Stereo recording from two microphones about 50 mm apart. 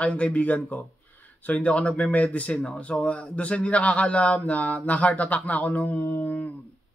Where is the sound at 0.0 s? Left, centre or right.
Left.